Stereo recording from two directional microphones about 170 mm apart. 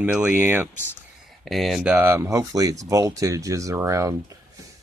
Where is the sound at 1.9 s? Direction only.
15° right (ahead or behind).